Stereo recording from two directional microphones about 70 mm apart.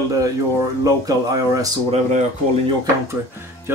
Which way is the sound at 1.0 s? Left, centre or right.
Right.